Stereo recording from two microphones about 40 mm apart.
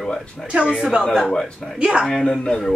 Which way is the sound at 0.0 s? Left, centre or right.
Centre.